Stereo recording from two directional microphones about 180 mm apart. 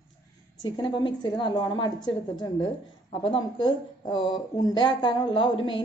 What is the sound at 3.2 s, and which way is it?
A woman's voice, 25° left (ahead or behind).